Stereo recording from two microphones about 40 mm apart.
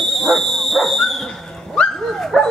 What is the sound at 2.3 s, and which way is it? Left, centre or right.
Dog, centre.